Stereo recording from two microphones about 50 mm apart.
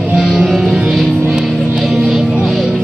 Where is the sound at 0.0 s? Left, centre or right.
Centre.